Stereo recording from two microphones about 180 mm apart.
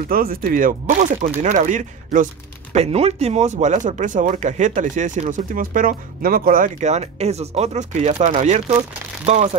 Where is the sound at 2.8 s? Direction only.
35° right (ahead or behind).